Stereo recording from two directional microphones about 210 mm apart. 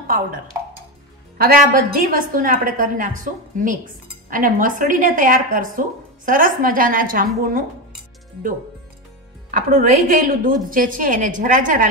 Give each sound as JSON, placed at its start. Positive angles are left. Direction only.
{"t": 1.4, "sound": "a woman's voice", "side_deg": -45}
{"t": 9.5, "sound": "a woman's voice", "side_deg": -40}